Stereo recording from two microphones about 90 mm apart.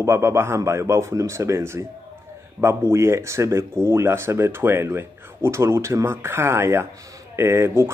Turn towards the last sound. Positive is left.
turn(degrees=-30)  # may be behind; listen again after turning